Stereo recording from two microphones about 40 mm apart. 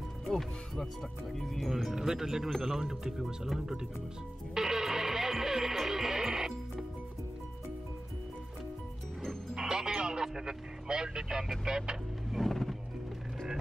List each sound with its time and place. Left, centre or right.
0.3 s speech: centre
2.0 s speech: centre
4.6 s music: centre
9.2 s music: centre
9.7 s vehicle: centre
11.6 s speech: centre
12.3 s music: centre